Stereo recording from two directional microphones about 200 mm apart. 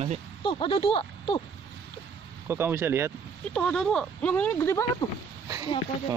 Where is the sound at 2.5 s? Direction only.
10° right (ahead or behind).